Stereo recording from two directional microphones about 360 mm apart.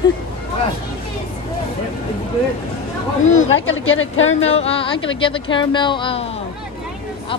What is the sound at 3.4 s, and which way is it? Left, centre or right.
Speech, left.